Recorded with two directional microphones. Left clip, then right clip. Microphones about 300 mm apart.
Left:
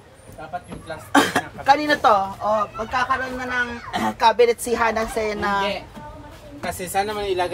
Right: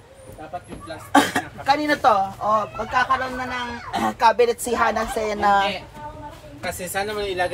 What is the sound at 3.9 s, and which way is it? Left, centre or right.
A woman's voice, centre.